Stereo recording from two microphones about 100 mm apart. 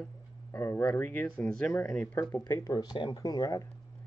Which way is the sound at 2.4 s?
35° left (ahead or behind).